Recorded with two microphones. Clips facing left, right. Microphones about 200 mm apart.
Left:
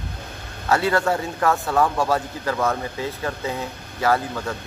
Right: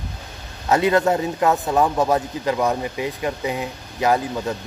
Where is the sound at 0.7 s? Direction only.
20° right (ahead or behind).